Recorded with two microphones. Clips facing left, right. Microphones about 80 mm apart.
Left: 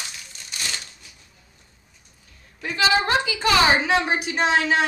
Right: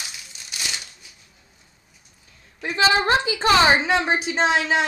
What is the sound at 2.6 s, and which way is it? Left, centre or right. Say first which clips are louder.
A woman's voice: right 1 dB; right.